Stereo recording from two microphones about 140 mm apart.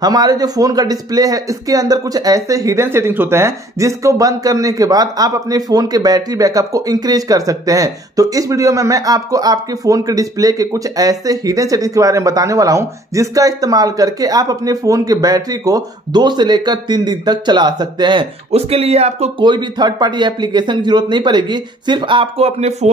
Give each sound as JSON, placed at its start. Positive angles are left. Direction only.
{"t": 0.0, "sound": "speech", "side_deg": -30}
{"t": 18.5, "sound": "speech", "side_deg": -45}
{"t": 19.4, "sound": "speech", "side_deg": -30}